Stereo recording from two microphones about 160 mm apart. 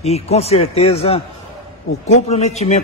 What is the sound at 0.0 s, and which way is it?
A man's voice, 40° left (ahead or behind).